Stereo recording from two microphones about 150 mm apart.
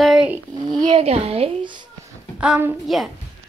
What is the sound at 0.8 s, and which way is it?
A child's voice, 40° right (ahead or behind).